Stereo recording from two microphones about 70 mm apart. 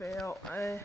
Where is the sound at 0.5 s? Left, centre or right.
Left.